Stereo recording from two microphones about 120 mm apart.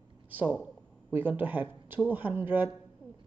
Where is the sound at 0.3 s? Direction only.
15° right (ahead or behind).